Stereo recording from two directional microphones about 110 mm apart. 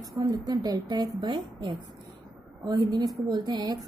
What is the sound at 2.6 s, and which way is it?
A woman's voice, 40° right (ahead or behind).